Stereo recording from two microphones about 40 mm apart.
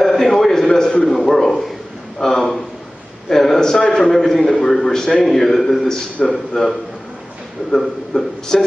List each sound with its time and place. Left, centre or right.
0.0 s a sound: centre
3.3 s a man's voice: centre
7.7 s a man's voice: centre